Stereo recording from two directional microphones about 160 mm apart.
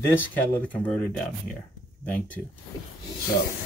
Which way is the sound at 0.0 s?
10° left (ahead or behind).